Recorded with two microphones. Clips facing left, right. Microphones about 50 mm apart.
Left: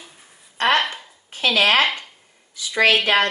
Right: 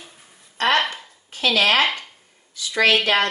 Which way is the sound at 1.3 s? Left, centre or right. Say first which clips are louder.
Left 1 dB; left.